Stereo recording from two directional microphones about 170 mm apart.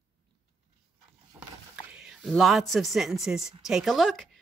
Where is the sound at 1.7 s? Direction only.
5° right (ahead or behind).